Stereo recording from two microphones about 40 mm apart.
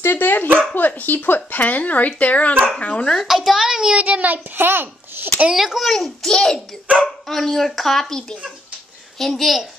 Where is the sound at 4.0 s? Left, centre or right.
Right.